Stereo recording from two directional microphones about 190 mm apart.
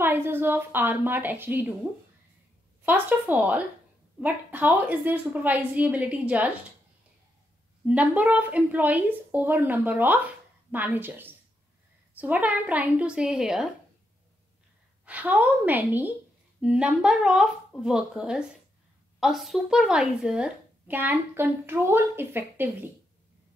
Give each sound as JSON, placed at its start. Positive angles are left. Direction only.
{"t": 0.0, "sound": "a woman's voice", "side_deg": -10}
{"t": 2.8, "sound": "a woman's voice", "side_deg": -10}
{"t": 7.8, "sound": "a woman's voice", "side_deg": -5}
{"t": 15.0, "sound": "a woman's voice", "side_deg": -5}